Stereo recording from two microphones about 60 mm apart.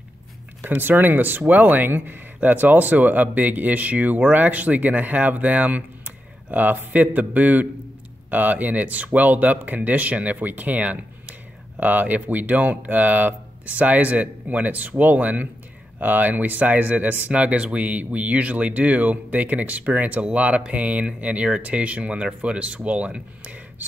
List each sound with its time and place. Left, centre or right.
0.7 s speech: right